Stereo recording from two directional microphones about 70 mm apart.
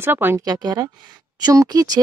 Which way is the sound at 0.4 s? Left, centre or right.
Right.